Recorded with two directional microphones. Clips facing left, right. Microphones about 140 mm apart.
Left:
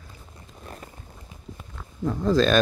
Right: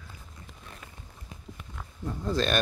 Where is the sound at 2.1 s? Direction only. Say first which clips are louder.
Left 9 dB; 90° left.